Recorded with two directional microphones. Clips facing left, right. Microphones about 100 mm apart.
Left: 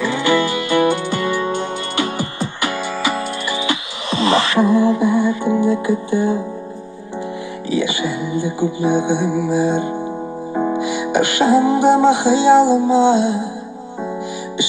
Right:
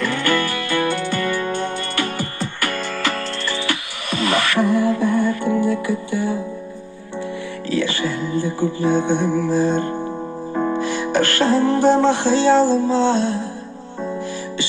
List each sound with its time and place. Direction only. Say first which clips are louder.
0.0 s music: left 3 dB; 15° left (ahead or behind)
7.7 s speech: left 2 dB; 15° left (ahead or behind)
10.5 s music: left 2 dB; 15° left (ahead or behind)